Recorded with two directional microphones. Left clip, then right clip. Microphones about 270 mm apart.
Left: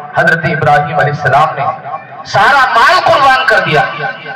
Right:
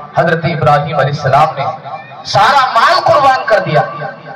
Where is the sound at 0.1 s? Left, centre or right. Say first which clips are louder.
Left 2 dB; right.